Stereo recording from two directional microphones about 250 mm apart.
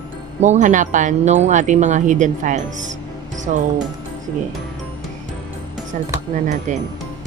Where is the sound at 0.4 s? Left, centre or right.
Right.